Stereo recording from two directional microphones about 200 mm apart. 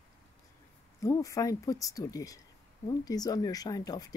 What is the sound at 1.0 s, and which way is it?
Speech, 15° left (ahead or behind).